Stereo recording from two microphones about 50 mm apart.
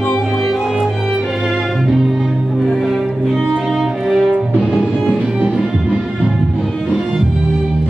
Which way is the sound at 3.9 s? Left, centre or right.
Centre.